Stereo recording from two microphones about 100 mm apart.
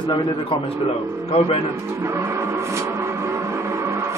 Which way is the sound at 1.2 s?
90° left.